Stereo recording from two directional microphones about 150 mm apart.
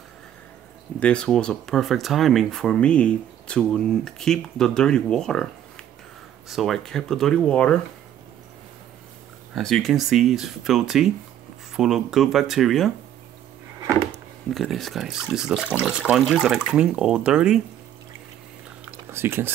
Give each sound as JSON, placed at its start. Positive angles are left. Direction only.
{"t": 0.9, "sound": "speech", "side_deg": 5}
{"t": 9.6, "sound": "speech", "side_deg": 5}
{"t": 14.1, "sound": "speech", "side_deg": 0}
{"t": 19.0, "sound": "speech", "side_deg": -15}